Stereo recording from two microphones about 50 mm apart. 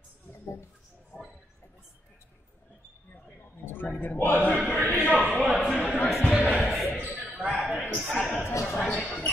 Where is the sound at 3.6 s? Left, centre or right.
Left.